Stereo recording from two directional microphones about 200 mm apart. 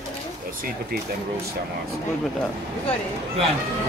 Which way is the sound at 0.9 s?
50° right (ahead or behind).